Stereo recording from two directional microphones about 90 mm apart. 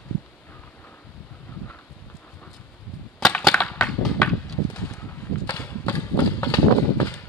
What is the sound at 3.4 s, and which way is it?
Crushing, 5° left (ahead or behind).